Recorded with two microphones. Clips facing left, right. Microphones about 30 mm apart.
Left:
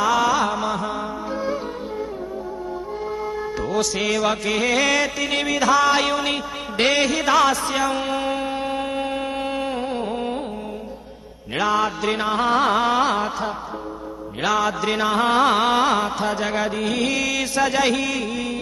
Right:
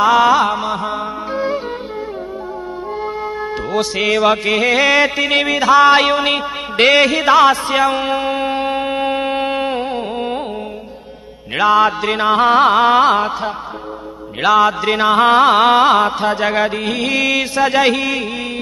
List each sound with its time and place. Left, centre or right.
0.0 s music: right
3.7 s music: right
5.4 s music: right
6.8 s mantra: right
7.1 s a sound: right
11.5 s music: right
12.0 s music: right
14.4 s mantra: right
14.7 s music: right